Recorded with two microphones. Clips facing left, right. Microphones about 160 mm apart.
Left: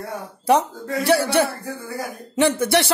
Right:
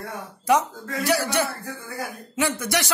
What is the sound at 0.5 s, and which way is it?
A man's voice, 30° left (ahead or behind).